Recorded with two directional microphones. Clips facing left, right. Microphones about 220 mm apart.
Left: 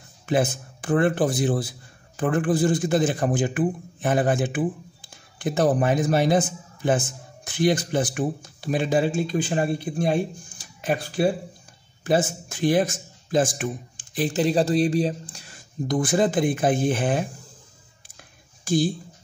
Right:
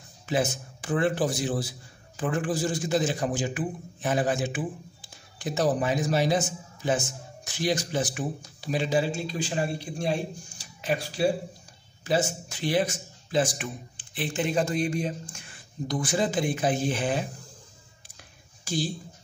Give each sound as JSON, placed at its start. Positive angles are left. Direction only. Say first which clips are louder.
{"t": 0.3, "sound": "a man's voice", "louder": "left 4 dB", "side_deg": 55}
{"t": 15.9, "sound": "speech", "louder": "left 6 dB", "side_deg": 50}
{"t": 18.6, "sound": "a sound", "louder": "left 8 dB", "side_deg": 50}